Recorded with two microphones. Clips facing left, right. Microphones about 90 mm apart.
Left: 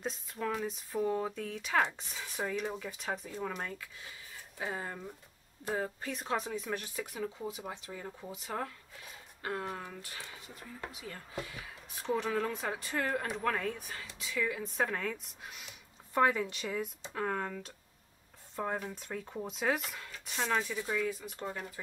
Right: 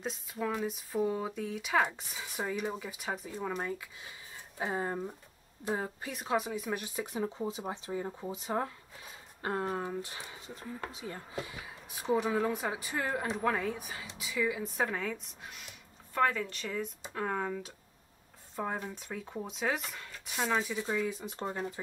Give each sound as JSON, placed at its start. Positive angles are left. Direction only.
{"t": 0.0, "sound": "speech", "side_deg": 0}
{"t": 5.7, "sound": "speech", "side_deg": -15}
{"t": 16.2, "sound": "speech", "side_deg": 15}
{"t": 17.0, "sound": "speech", "side_deg": -5}